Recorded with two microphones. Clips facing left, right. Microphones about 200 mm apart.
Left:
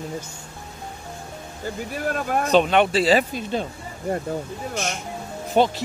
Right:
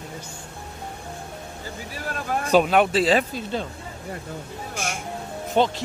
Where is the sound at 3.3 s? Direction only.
15° left (ahead or behind).